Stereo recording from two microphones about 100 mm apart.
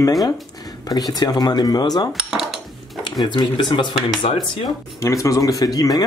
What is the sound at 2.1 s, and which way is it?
Speech, 5° right (ahead or behind).